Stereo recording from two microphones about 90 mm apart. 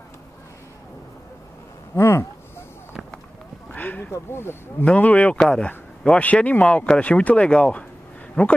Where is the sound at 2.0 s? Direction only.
30° left (ahead or behind).